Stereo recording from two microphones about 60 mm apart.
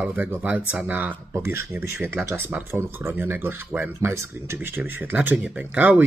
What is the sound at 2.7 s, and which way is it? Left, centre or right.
Speech, right.